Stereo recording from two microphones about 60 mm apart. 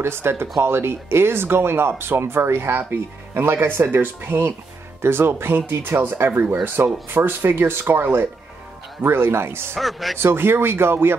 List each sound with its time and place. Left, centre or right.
0.0 s speech: right
9.8 s speech: centre
10.1 s speech: right